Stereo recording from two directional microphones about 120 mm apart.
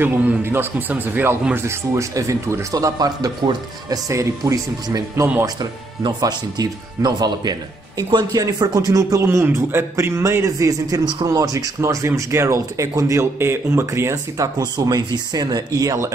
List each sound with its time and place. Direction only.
0.0 s speech: 15° right (ahead or behind)